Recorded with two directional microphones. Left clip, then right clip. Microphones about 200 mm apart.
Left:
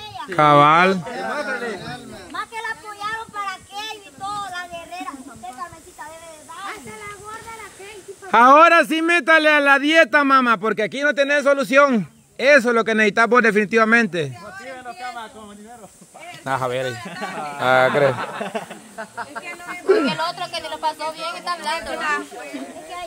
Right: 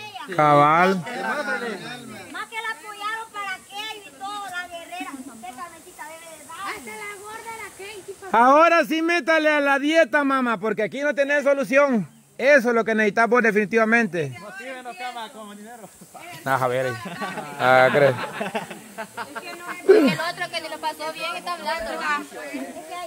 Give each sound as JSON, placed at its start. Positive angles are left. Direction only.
{"t": 0.3, "sound": "a man's voice", "side_deg": 20}
{"t": 1.3, "sound": "a sound", "side_deg": 15}
{"t": 6.6, "sound": "snake", "side_deg": -20}
{"t": 8.3, "sound": "a man's voice", "side_deg": 15}
{"t": 14.7, "sound": "a sound", "side_deg": -15}
{"t": 16.4, "sound": "speech", "side_deg": 0}
{"t": 18.9, "sound": "speech", "side_deg": -40}
{"t": 19.9, "sound": "speech", "side_deg": -10}
{"t": 21.6, "sound": "a woman's voice", "side_deg": 45}